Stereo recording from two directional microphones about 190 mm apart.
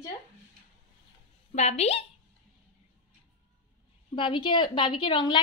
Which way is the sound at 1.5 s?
35° left (ahead or behind).